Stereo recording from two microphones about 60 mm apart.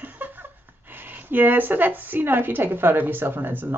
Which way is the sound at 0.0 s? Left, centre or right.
Right.